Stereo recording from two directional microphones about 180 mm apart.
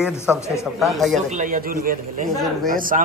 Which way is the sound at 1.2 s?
45° right (ahead or behind).